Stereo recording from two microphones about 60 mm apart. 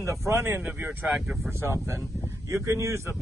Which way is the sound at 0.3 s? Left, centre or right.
Right.